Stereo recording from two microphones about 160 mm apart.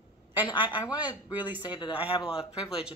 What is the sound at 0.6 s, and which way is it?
Speech, 25° left (ahead or behind).